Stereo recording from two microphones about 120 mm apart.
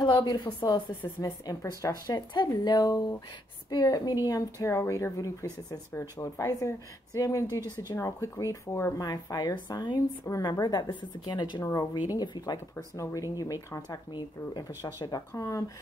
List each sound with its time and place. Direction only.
0.0 s a woman's voice: 35° left (ahead or behind)
0.4 s a woman's voice: 15° left (ahead or behind)
1.0 s a woman's voice: 30° left (ahead or behind)
11.6 s a woman's voice: 25° left (ahead or behind)
14.1 s a woman's voice: 40° left (ahead or behind)
14.8 s speech: 30° left (ahead or behind)